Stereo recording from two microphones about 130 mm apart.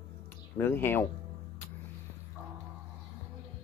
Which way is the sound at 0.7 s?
15° left (ahead or behind).